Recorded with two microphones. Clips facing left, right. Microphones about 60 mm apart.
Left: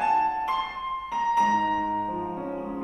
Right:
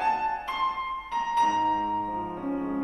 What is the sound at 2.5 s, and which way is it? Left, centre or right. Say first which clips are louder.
Music: right 3 dB; centre.